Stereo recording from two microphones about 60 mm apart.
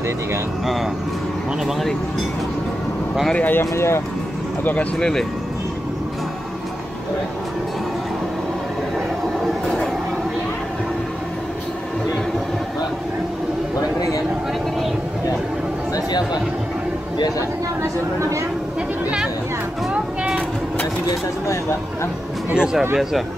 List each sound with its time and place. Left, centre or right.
3.3 s speech: left
3.7 s speech: left
4.9 s speech: centre
8.9 s train: centre
22.5 s speech: centre